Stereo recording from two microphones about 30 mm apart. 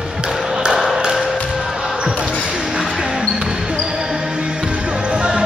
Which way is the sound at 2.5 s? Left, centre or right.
Centre.